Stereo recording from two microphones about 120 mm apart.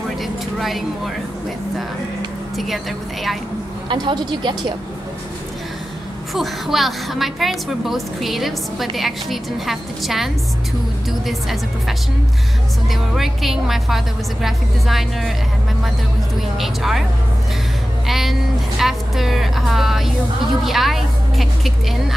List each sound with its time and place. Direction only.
0.2 s vehicle: centre (ahead or behind)
2.5 s a woman's voice: centre (ahead or behind)
3.9 s speech: 40° right (ahead or behind)
6.3 s a woman's voice: centre (ahead or behind)
13.1 s a woman's voice: centre (ahead or behind)
16.5 s a woman's voice: centre (ahead or behind)
18.0 s a woman's voice: centre (ahead or behind)